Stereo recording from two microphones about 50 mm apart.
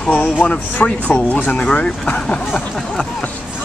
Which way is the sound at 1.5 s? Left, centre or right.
Left.